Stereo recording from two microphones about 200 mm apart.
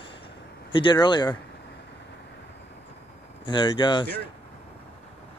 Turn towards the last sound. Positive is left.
turn(degrees=25)  # may be behind; listen again after turning